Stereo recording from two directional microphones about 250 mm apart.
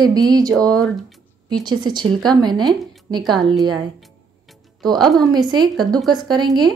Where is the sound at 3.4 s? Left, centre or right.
Centre.